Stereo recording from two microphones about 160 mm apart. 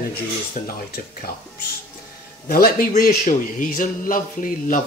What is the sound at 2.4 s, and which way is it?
Speech, 65° left (ahead or behind).